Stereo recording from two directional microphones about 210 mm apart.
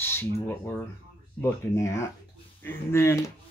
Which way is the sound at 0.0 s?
10° left (ahead or behind).